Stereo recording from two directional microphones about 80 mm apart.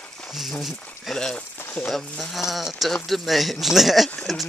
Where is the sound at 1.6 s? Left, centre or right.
Left.